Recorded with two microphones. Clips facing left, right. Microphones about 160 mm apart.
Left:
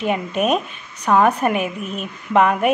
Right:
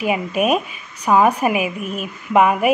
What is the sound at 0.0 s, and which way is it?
A woman's voice, 5° right (ahead or behind).